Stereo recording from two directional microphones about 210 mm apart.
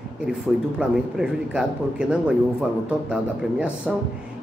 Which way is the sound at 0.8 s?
5° right (ahead or behind).